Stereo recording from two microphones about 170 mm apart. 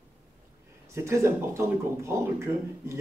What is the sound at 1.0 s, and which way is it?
Speech, 15° right (ahead or behind).